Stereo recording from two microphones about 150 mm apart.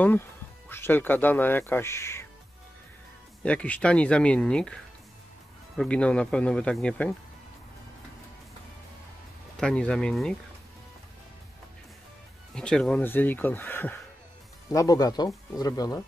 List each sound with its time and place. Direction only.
0.7 s speech: 15° left (ahead or behind)
3.4 s speech: 10° left (ahead or behind)
5.8 s speech: 5° left (ahead or behind)
9.6 s speech: 5° left (ahead or behind)
12.5 s speech: 5° left (ahead or behind)
14.7 s speech: 25° left (ahead or behind)